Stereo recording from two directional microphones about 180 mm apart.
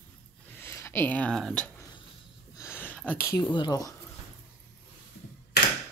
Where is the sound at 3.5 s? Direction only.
25° left (ahead or behind).